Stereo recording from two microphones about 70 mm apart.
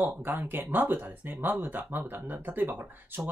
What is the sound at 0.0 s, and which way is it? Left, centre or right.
Speech, right.